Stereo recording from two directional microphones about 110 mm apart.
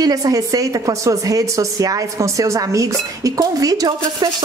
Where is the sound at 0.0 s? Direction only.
35° right (ahead or behind).